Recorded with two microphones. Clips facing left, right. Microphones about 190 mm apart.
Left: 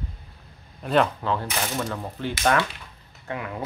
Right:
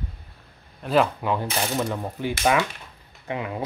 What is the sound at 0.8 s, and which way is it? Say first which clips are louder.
Speech: right 1 dB; 5° right (ahead or behind).